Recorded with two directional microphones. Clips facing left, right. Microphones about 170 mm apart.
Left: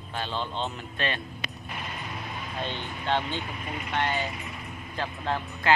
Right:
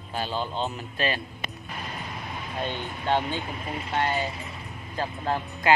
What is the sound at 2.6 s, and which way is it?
Speech, 10° right (ahead or behind).